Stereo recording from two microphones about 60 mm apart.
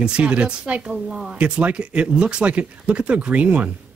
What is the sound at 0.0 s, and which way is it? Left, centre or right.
Speech, centre.